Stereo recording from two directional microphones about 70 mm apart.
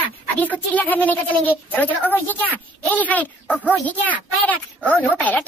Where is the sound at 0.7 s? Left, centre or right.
Left.